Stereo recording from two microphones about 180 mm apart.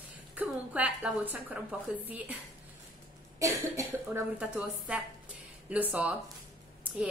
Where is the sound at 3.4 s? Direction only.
15° right (ahead or behind).